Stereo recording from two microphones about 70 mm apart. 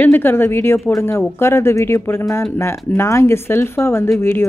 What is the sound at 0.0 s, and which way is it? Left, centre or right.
Speech, left.